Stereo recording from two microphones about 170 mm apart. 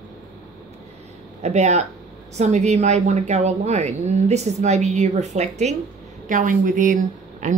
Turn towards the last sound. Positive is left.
turn(degrees=-50)  # may be behind; listen again after turning